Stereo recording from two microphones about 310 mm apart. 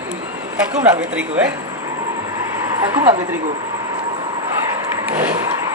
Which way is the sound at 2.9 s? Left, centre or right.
Centre.